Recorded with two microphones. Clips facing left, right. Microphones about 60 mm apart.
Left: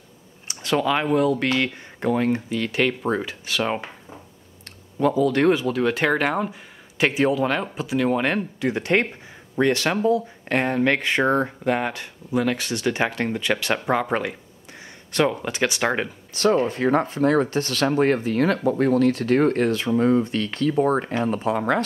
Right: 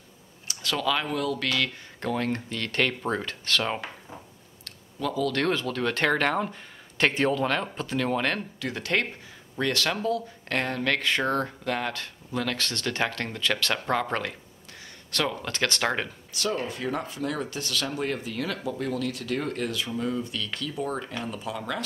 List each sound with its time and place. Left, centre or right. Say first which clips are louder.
0.5 s speech: left 5 dB; left
4.6 s speech: left 9 dB; left; by 16.1 s centre
16.6 s speech: left 10 dB; left